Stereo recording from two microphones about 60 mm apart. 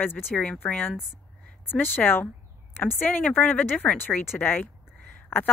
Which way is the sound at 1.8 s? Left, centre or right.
Left.